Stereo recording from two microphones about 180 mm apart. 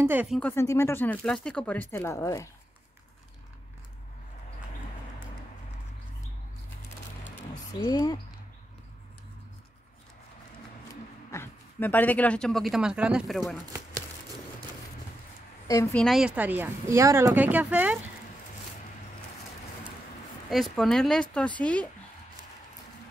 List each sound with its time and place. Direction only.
0.0 s speech: 10° right (ahead or behind)
0.4 s speech: 15° left (ahead or behind)
7.8 s speech: 20° left (ahead or behind)
11.2 s speech: 15° left (ahead or behind)
15.6 s a woman's voice: 15° left (ahead or behind)
16.0 s speech: centre (ahead or behind)
20.4 s speech: centre (ahead or behind)